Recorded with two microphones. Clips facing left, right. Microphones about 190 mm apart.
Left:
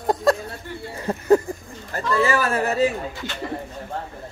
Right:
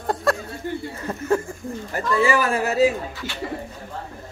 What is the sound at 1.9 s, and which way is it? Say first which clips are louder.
Speech: right 1 dB; 15° right (ahead or behind).